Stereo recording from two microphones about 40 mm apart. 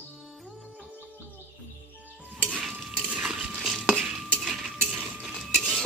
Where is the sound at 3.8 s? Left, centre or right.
Right.